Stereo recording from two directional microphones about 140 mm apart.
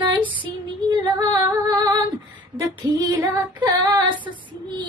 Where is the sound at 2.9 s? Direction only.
25° right (ahead or behind).